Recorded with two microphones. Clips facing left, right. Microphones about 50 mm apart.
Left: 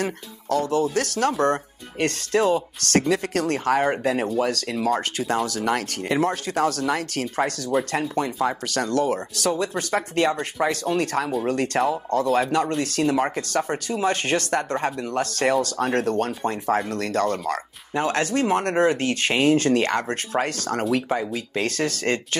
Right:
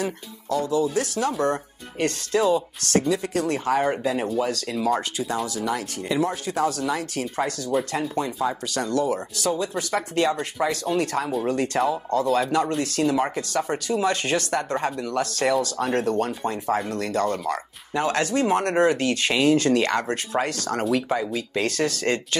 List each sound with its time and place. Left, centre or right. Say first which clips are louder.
0.0 s speech: left 1 dB; left
13.4 s speech: left 1 dB; left
17.9 s speech: even; left